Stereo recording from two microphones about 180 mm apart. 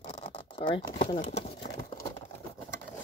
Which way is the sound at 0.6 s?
25° left (ahead or behind).